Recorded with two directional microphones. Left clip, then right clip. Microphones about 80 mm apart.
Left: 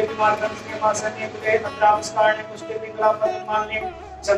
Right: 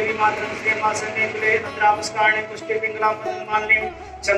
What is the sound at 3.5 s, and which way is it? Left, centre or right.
Speech, left.